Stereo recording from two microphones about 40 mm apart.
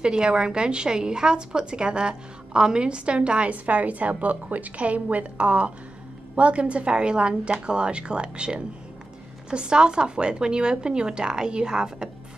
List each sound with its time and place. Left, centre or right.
0.0 s a woman's voice: right